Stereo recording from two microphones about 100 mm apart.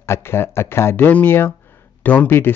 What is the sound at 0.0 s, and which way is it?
Speech, 25° left (ahead or behind).